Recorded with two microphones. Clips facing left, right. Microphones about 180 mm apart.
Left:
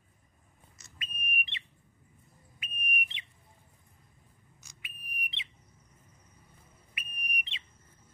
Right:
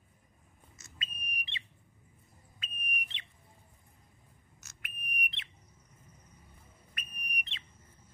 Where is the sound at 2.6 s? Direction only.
10° left (ahead or behind).